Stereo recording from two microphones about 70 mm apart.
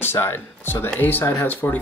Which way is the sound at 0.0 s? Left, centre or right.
Left.